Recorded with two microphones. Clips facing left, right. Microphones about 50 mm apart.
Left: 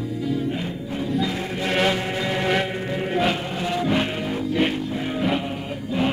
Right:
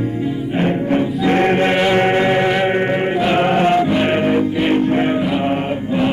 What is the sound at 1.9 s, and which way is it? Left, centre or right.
Chant, right.